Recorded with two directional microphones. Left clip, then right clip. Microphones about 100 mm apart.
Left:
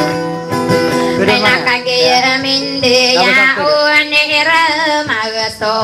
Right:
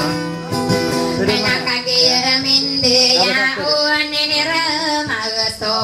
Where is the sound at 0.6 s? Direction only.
40° left (ahead or behind).